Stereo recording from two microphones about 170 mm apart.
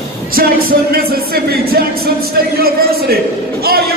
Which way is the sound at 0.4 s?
60° right (ahead or behind).